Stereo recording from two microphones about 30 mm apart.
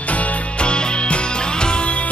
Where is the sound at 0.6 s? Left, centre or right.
Left.